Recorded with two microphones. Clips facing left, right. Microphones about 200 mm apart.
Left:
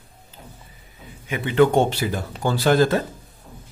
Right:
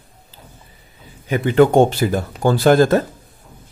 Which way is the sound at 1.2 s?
40° right (ahead or behind).